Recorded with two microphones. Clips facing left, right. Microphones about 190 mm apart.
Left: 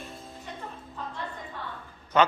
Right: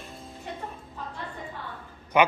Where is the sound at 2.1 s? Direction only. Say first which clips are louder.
Right 1 dB; 15° right (ahead or behind).